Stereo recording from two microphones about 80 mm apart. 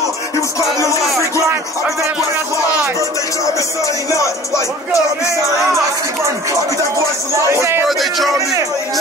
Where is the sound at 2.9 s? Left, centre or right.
Left.